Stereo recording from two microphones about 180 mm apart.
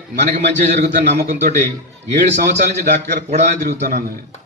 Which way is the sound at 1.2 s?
40° right (ahead or behind).